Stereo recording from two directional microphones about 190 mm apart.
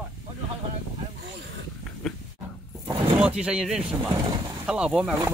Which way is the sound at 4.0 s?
20° right (ahead or behind).